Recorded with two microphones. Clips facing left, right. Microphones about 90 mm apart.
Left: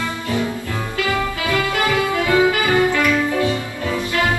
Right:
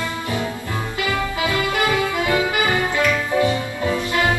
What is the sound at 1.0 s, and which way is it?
Music, 20° right (ahead or behind).